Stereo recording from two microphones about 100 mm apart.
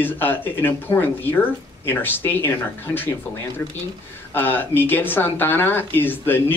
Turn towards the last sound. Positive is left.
turn(degrees=20)  # may be behind; listen again after turning